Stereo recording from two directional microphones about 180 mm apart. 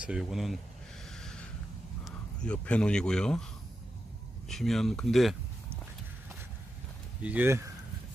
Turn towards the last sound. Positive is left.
turn(degrees=-15)  # may be behind; listen again after turning